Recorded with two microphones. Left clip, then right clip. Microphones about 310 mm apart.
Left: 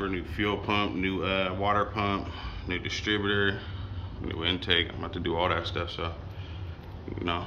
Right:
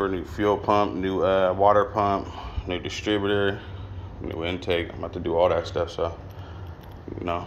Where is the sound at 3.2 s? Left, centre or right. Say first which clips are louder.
Right 4 dB; centre.